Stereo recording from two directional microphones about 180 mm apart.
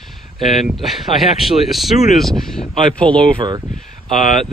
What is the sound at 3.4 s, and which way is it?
Speech, 25° right (ahead or behind).